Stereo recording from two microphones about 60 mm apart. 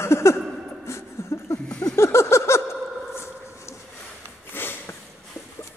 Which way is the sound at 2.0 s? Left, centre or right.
Left.